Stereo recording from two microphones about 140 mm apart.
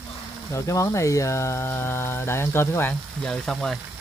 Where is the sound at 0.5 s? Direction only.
25° left (ahead or behind).